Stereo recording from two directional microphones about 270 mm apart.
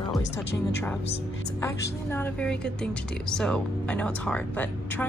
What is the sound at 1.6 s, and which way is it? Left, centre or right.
Speech, centre.